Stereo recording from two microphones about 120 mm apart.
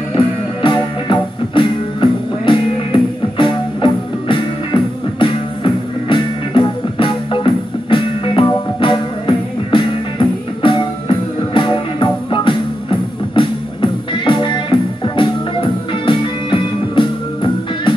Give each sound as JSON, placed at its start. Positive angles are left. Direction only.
{"t": 0.1, "sound": "music", "side_deg": 45}